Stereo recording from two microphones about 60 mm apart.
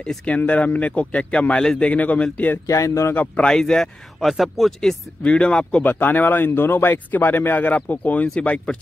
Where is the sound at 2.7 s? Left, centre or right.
Left.